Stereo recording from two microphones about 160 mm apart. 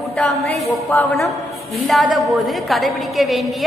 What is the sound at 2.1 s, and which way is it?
A woman's voice, centre (ahead or behind).